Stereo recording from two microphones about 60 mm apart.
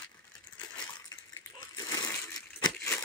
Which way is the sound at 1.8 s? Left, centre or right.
Left.